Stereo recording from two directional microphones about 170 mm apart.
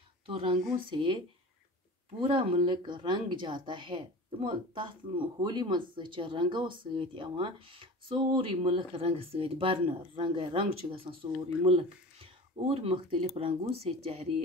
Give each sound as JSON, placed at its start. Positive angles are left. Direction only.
{"t": 0.3, "sound": "speech", "side_deg": -30}
{"t": 2.1, "sound": "speech", "side_deg": -30}
{"t": 12.6, "sound": "speech", "side_deg": -35}